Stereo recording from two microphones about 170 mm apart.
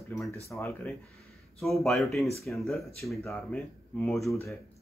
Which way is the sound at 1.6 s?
Centre (ahead or behind).